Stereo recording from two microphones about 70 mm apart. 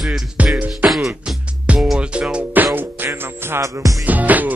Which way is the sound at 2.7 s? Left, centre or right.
Right.